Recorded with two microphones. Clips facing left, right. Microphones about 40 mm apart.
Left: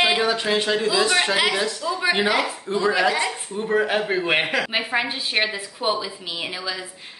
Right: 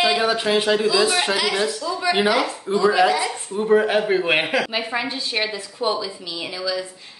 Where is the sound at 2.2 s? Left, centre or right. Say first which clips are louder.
Right 2 dB; centre.